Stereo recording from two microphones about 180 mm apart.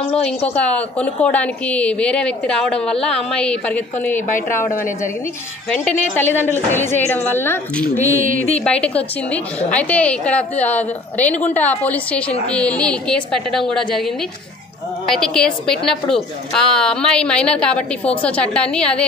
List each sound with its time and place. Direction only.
0.6 s a woman's voice: 5° left (ahead or behind)
4.6 s a woman's voice: 45° left (ahead or behind)
6.1 s a woman's voice: 10° left (ahead or behind)
8.2 s speech: 45° right (ahead or behind)
8.5 s a woman's voice: 5° left (ahead or behind)